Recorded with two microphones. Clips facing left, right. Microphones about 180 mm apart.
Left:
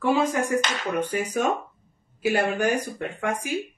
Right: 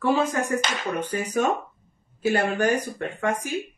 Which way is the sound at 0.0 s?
15° left (ahead or behind).